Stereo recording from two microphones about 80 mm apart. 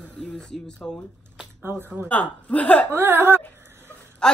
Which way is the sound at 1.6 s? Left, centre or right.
Right.